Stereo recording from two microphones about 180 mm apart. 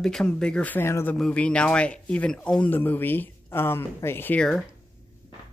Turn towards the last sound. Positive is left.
turn(degrees=5)  # may be behind; listen again after turning